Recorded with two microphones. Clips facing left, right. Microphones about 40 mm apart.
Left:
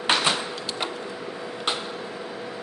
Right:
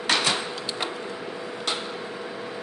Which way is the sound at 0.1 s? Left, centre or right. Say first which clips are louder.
Left 1 dB; left.